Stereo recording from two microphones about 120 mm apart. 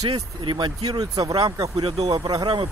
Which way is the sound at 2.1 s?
30° right (ahead or behind).